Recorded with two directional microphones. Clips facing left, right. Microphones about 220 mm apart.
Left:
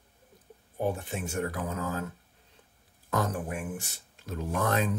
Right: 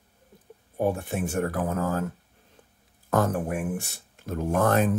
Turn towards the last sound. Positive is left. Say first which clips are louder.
# right 6 dB
turn(degrees=-55)  # may be behind; listen again after turning